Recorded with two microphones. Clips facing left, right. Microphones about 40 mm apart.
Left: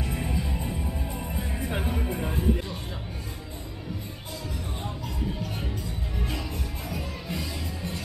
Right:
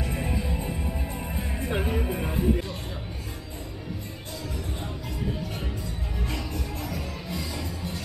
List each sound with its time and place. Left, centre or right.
0.0 s music: centre
0.7 s music: centre
6.2 s music: centre